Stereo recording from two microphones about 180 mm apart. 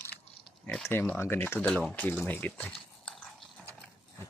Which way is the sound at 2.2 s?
10° left (ahead or behind).